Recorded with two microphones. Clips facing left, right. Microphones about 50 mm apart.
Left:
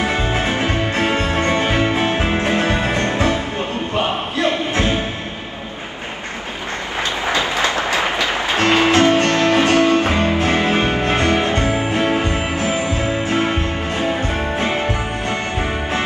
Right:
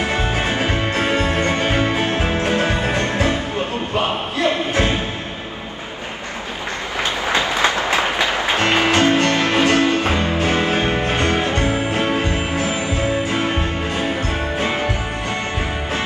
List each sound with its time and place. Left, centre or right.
0.5 s music: left
7.3 s music: right
9.0 s music: left